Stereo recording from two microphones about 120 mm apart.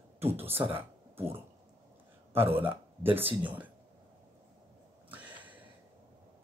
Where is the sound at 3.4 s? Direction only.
10° right (ahead or behind).